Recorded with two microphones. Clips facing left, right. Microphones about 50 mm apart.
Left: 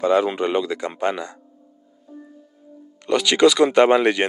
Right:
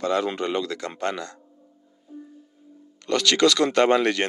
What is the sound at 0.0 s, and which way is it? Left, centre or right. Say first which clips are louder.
Speech: left 6 dB; centre.